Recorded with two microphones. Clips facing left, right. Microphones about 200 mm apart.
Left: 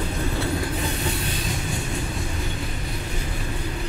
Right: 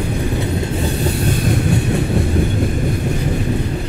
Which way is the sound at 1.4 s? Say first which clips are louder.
Right 12 dB; 65° right (ahead or behind).